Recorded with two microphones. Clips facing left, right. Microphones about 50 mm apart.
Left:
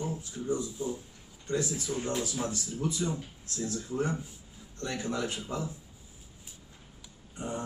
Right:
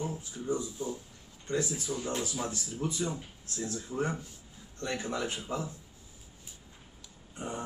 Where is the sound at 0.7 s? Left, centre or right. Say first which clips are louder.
Left 2 dB; centre.